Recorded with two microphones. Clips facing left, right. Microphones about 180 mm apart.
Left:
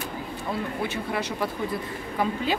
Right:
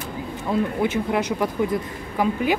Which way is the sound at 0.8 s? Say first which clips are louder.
Right 7 dB; 20° right (ahead or behind).